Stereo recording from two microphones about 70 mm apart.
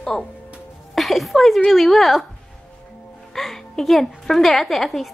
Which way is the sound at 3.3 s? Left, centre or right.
Centre.